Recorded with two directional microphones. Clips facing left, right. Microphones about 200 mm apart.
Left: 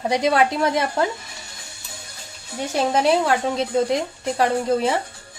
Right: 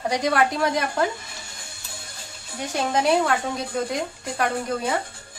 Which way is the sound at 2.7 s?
25° left (ahead or behind).